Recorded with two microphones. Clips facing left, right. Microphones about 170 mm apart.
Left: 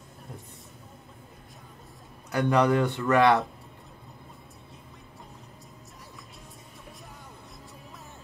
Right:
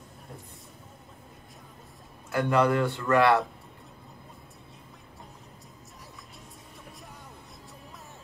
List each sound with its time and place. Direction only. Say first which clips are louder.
2.3 s speech: left 1 dB; 20° left (ahead or behind)